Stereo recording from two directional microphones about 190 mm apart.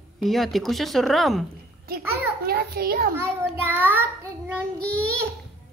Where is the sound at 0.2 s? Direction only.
Centre (ahead or behind).